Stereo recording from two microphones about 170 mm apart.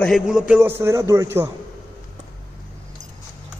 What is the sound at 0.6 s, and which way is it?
Speech, 15° right (ahead or behind).